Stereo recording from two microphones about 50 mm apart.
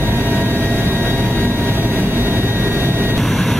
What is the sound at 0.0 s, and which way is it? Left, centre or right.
Vehicle, right.